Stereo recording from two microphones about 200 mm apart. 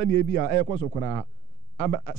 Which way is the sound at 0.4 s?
15° right (ahead or behind).